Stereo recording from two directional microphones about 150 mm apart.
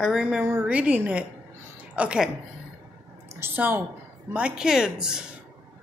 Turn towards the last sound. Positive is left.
turn(degrees=-5)  # may be behind; listen again after turning